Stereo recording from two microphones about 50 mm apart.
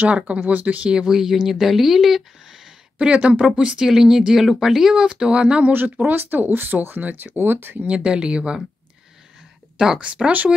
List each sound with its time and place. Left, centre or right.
0.4 s speech: right
0.8 s speech: centre
3.1 s speech: right; by 5.0 s centre
5.0 s speech: centre
5.7 s speech: right
7.9 s speech: centre
9.9 s speech: right